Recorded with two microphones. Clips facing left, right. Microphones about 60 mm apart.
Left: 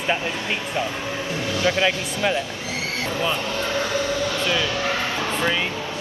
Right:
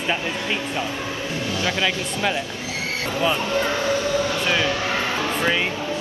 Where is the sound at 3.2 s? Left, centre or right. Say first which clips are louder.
Right 5 dB; right.